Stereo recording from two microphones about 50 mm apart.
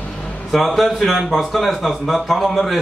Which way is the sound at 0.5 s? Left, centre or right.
Centre.